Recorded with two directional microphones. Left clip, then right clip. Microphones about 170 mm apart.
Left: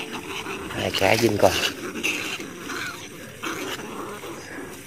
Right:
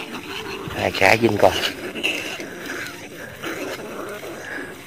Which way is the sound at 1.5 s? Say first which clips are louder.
Right 2 dB; 40° left (ahead or behind).